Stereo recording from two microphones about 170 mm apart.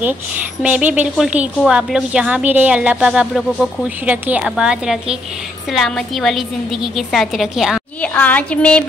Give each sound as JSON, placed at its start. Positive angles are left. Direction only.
{"t": 0.6, "sound": "a woman's voice", "side_deg": -5}
{"t": 8.0, "sound": "music", "side_deg": 10}